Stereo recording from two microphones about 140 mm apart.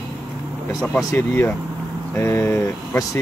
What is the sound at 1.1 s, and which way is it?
Speech, 20° left (ahead or behind).